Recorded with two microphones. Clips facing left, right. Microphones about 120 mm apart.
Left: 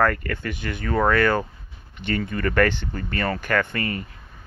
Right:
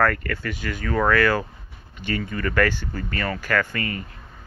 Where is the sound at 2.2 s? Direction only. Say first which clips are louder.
Left 2 dB; 40° left (ahead or behind).